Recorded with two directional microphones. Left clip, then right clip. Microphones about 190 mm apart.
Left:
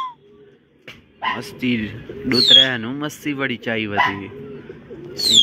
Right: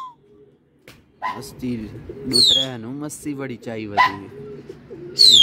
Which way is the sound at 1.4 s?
10° right (ahead or behind).